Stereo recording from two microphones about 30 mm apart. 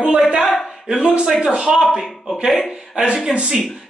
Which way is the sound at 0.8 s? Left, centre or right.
Right.